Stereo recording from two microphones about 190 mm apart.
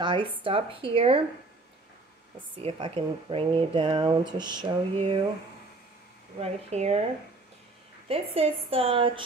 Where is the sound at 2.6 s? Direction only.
30° right (ahead or behind).